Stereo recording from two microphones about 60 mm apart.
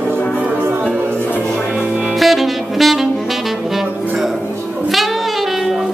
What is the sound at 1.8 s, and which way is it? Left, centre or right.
Music, right.